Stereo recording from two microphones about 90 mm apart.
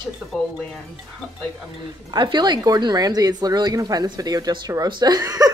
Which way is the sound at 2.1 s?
55° right (ahead or behind).